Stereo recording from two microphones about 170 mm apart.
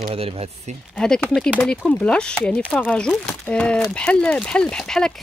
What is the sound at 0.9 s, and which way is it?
Speech, 5° left (ahead or behind).